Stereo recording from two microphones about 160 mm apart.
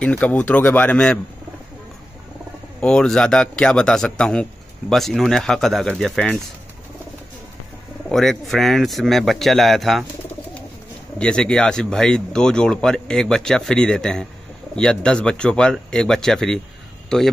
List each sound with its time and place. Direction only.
0.0 s speech: 10° left (ahead or behind)
2.8 s a man's voice: 5° left (ahead or behind)
8.1 s a man's voice: centre (ahead or behind)
11.1 s a man's voice: 5° left (ahead or behind)